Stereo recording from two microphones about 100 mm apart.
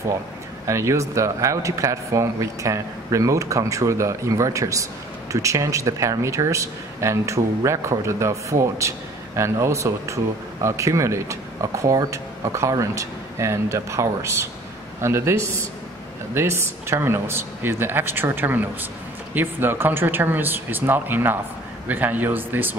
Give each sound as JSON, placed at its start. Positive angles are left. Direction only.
{"t": 0.7, "sound": "a woman's voice", "side_deg": -30}